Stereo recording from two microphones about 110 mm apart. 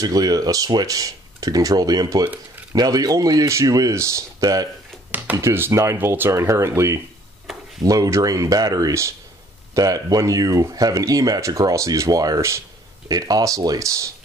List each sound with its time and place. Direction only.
0.0 s speech: 35° right (ahead or behind)
5.1 s speech: 15° right (ahead or behind)